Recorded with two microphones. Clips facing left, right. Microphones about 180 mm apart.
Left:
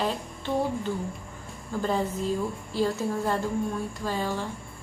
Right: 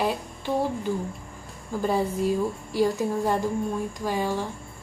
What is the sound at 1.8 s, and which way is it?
A woman's voice, 10° right (ahead or behind).